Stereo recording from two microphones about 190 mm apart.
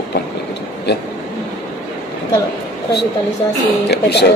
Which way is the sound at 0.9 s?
60° left (ahead or behind).